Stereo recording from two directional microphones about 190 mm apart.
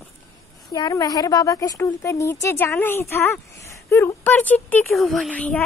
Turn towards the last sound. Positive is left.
turn(degrees=5)  # may be behind; listen again after turning